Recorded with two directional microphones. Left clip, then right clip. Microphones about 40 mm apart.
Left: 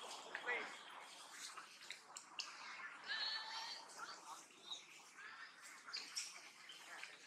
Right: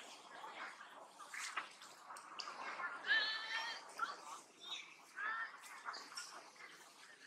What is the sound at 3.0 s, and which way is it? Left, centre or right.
Goat, right.